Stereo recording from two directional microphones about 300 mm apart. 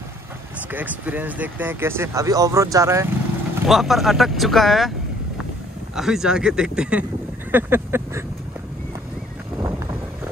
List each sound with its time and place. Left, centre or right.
0.7 s speech: centre
5.9 s speech: centre